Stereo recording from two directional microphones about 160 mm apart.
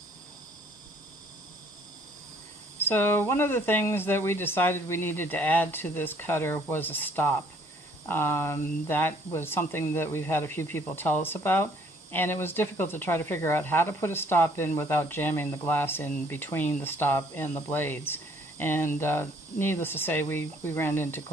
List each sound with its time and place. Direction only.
2.9 s speech: 15° left (ahead or behind)